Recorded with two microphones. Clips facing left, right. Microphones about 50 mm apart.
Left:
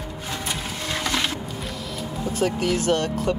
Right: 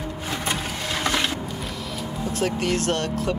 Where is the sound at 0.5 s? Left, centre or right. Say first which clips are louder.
Right 1 dB; right.